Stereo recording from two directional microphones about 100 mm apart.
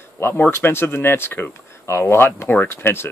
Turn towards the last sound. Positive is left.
turn(degrees=25)  # may be behind; listen again after turning